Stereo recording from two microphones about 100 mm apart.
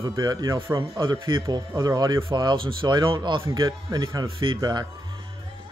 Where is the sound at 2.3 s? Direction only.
50° right (ahead or behind).